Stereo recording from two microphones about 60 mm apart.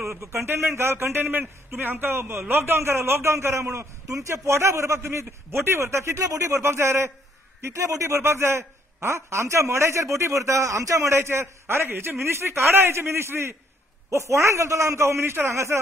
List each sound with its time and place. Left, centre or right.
0.0 s a man's voice: right
7.6 s a man's voice: right